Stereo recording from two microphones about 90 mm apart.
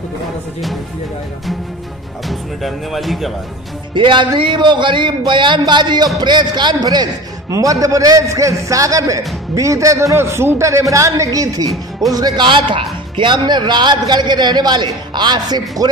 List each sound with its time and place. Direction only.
2.2 s speech: centre (ahead or behind)
3.9 s a man's voice: 65° right (ahead or behind); by 12.2 s 45° right (ahead or behind)
12.4 s speech: 65° right (ahead or behind)